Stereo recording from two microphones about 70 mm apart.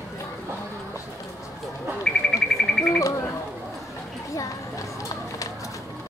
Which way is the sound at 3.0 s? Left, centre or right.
Left.